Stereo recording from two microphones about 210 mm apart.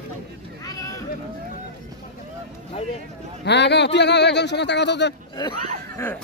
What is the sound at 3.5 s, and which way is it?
Speech, 55° left (ahead or behind).